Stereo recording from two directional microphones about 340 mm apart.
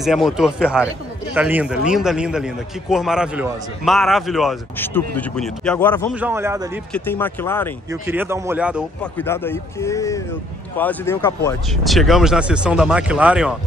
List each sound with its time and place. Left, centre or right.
0.0 s a man's voice: centre
6.9 s a man's voice: centre
7.9 s a man's voice: centre